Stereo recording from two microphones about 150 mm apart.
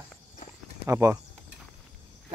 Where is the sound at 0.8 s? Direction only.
15° right (ahead or behind).